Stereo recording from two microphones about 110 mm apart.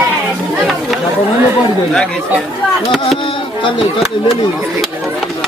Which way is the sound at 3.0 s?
60° left (ahead or behind).